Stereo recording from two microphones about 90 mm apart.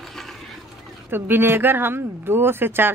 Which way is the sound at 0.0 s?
Centre (ahead or behind).